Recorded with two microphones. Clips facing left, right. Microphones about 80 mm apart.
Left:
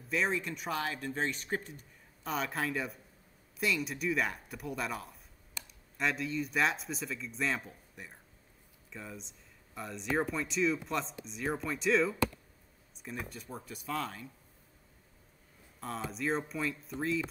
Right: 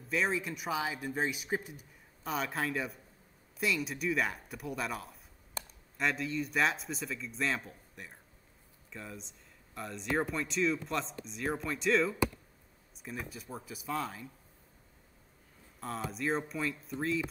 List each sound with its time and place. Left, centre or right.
0.1 s speech: centre
5.6 s a sound: right
5.9 s speech: centre
15.8 s speech: centre